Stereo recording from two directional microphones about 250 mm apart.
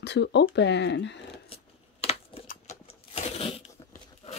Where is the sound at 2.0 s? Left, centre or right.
Left.